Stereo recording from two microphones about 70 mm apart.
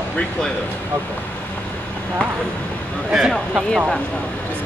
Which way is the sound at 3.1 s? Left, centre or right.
Centre.